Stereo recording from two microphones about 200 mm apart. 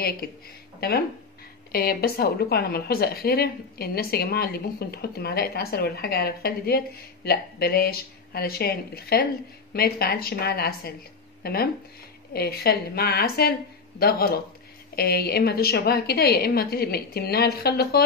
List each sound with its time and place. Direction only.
0.7 s a woman's voice: 50° left (ahead or behind)